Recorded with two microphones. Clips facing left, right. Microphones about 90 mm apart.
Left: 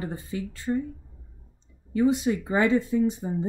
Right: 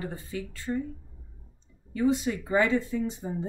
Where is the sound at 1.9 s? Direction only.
20° left (ahead or behind).